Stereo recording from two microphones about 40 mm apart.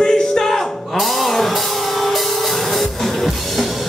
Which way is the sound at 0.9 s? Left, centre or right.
Centre.